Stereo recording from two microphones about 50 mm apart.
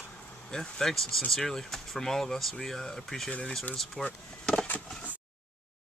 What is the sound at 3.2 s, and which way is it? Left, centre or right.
Speech, left.